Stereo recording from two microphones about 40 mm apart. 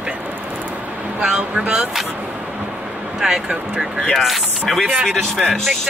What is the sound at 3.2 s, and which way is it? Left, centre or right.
Speech, centre.